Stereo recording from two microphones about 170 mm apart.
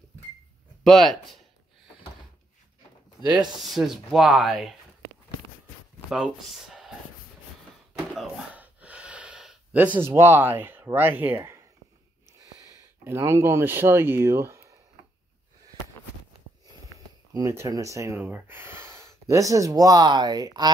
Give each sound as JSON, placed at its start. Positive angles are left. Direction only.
{"t": 0.8, "sound": "speech", "side_deg": 0}
{"t": 3.6, "sound": "speech", "side_deg": 0}
{"t": 6.0, "sound": "speech", "side_deg": -5}
{"t": 8.1, "sound": "gasp", "side_deg": -5}
{"t": 13.0, "sound": "speech", "side_deg": -15}
{"t": 17.3, "sound": "speech", "side_deg": -20}